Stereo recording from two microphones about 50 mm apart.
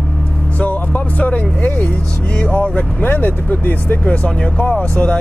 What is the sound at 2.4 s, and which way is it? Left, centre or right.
Speech, left.